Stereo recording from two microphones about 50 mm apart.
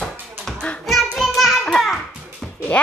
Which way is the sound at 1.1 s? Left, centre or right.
Centre.